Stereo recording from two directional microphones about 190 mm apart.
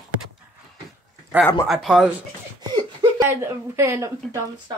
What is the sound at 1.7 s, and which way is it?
Speech, centre (ahead or behind).